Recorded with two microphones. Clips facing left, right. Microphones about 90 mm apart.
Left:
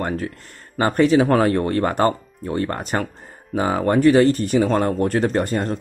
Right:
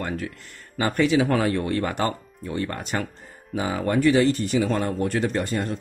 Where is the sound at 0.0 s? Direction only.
40° left (ahead or behind).